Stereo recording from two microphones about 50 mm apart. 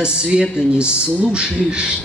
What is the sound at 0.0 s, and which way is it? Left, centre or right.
Speech, centre.